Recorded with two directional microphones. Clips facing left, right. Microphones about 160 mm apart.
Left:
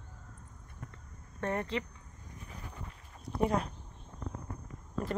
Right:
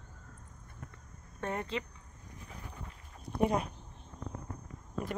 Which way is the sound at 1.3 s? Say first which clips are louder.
Left 2 dB; 15° right (ahead or behind).